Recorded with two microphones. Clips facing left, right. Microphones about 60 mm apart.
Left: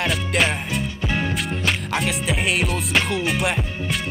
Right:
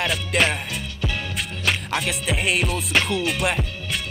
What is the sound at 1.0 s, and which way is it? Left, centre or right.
Music, left.